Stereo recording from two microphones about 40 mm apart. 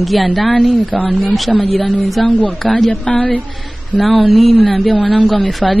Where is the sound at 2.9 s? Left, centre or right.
Centre.